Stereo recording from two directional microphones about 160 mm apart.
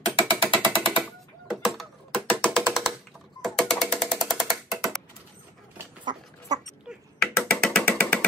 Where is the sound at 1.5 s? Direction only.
Centre (ahead or behind).